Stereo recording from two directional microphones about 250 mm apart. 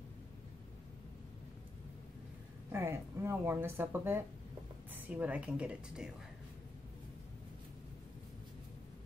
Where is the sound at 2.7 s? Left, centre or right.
Centre.